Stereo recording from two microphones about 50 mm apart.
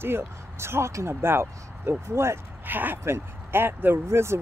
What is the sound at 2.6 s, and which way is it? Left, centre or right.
Speech, right.